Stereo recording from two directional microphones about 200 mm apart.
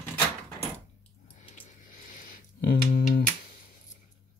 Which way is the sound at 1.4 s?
40° left (ahead or behind).